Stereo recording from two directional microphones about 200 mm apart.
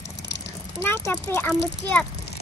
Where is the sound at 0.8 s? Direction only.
10° left (ahead or behind).